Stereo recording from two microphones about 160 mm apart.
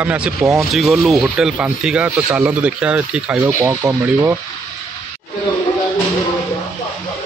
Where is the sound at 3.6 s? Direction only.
20° right (ahead or behind).